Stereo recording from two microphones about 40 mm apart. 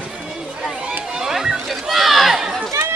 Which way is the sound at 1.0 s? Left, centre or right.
Centre.